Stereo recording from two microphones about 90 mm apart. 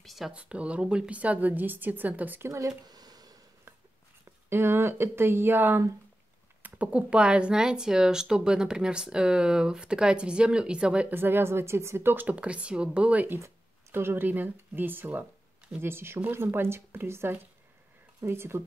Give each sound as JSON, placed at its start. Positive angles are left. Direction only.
{"t": 0.0, "sound": "a sound", "side_deg": 0}
{"t": 0.3, "sound": "speech", "side_deg": -15}
{"t": 2.9, "sound": "a sound", "side_deg": -45}
{"t": 4.5, "sound": "a woman's voice", "side_deg": -30}
{"t": 6.6, "sound": "speech", "side_deg": -15}
{"t": 11.1, "sound": "a woman's voice", "side_deg": -25}